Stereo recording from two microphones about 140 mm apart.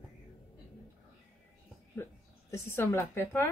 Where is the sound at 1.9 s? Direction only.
15° left (ahead or behind).